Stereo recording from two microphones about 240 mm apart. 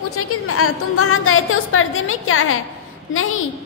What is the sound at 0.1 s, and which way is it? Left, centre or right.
A woman's voice, left.